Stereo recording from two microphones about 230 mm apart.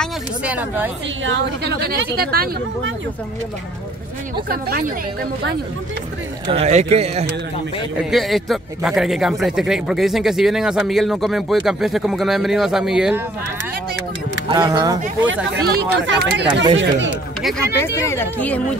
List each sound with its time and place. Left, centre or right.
0.0 s speech: centre
1.2 s a woman's voice: right
4.5 s a woman's voice: right
6.4 s speech: right
8.1 s speech: centre
14.5 s speech: centre
15.6 s a woman's voice: right
17.8 s speech: centre